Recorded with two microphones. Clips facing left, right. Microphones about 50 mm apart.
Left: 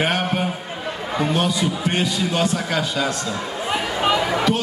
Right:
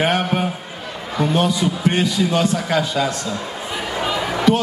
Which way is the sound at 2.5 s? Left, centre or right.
Right.